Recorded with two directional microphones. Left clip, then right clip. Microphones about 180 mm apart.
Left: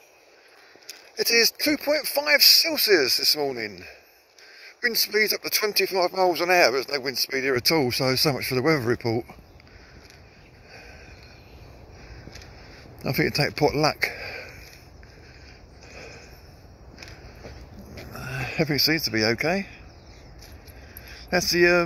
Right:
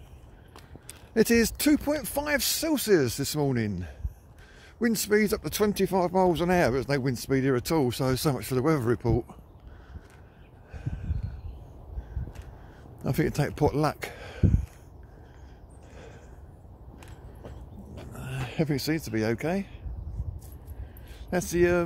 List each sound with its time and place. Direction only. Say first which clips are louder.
1.1 s speech: left 3 dB; 15° right (ahead or behind)
13.0 s speech: left 5 dB; 15° right (ahead or behind)
15.9 s a sound: left 7 dB; 10° right (ahead or behind)
17.9 s speech: left 6 dB; 5° right (ahead or behind)
21.1 s speech: left 6 dB; 5° right (ahead or behind)